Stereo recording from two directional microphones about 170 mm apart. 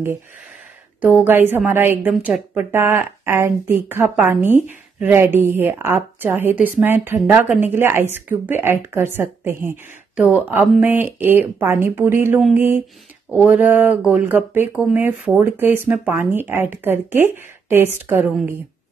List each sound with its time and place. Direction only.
1.0 s a woman's voice: 10° right (ahead or behind)